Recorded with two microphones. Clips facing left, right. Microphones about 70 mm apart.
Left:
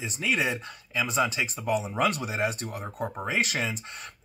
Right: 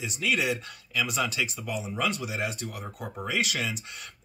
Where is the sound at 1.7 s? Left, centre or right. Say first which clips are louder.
Left 7 dB; left.